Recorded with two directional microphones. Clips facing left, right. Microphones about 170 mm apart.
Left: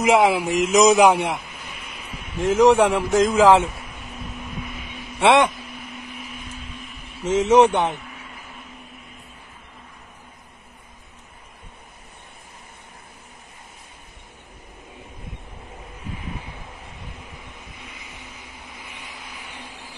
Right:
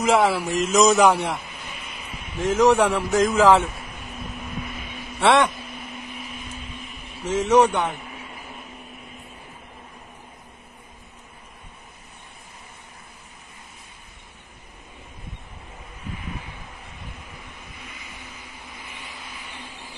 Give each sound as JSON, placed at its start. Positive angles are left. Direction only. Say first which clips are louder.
{"t": 0.0, "sound": "a man's voice", "louder": "left 2 dB", "side_deg": 15}
{"t": 5.2, "sound": "a man's voice", "louder": "left 2 dB", "side_deg": 15}
{"t": 7.2, "sound": "speech", "louder": "left 3 dB", "side_deg": 20}